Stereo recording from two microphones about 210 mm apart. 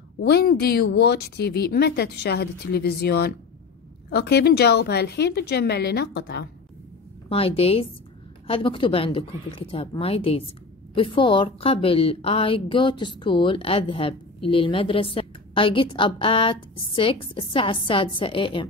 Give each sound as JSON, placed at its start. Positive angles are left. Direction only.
{"t": 0.2, "sound": "a woman's voice", "side_deg": 50}
{"t": 7.2, "sound": "a woman's voice", "side_deg": 25}